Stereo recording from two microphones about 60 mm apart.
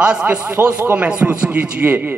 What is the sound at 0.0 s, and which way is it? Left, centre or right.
A man's voice, centre.